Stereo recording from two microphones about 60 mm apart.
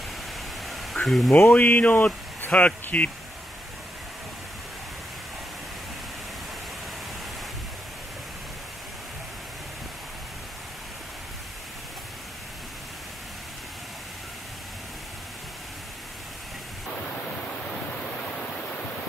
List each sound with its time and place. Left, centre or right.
0.9 s speech: centre
1.5 s speech: left